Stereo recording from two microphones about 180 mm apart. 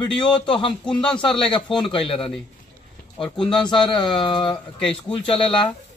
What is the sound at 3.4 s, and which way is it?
Speech, 25° left (ahead or behind).